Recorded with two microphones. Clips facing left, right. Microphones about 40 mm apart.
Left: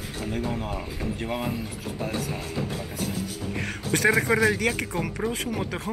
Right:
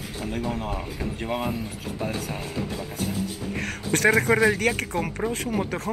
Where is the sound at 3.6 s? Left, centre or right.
Right.